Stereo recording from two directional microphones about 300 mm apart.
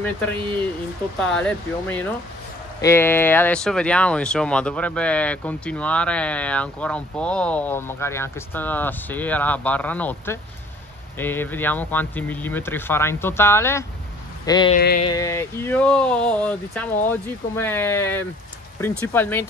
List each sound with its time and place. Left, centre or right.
1.3 s speech: centre
14.8 s a sound: left
15.0 s speech: centre